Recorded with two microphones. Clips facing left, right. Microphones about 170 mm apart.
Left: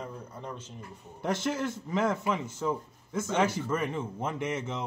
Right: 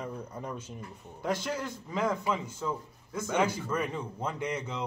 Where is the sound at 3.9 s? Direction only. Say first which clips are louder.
Left 2 dB; 25° left (ahead or behind).